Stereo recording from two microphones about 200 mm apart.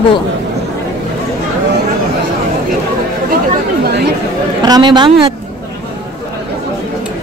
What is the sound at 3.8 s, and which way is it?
Speech, 55° right (ahead or behind).